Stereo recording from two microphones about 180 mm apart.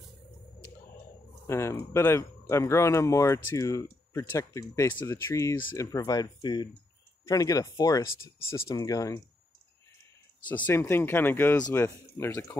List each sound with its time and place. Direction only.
1.5 s speech: 15° left (ahead or behind)
10.5 s speech: 10° left (ahead or behind)